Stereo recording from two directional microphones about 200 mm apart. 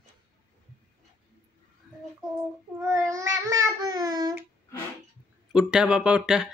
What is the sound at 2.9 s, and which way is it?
Child singing, 15° right (ahead or behind).